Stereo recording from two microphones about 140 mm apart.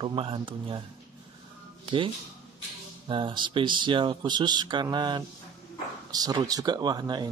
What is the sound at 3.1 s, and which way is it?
Speech, 35° right (ahead or behind).